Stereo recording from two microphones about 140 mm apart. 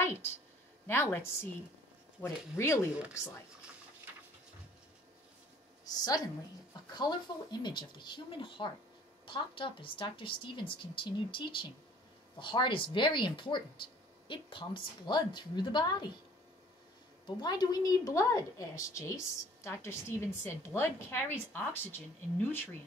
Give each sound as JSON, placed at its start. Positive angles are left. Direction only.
{"t": 0.0, "sound": "a woman's voice", "side_deg": 15}
{"t": 5.9, "sound": "a woman's voice", "side_deg": 30}
{"t": 17.4, "sound": "a woman's voice", "side_deg": 30}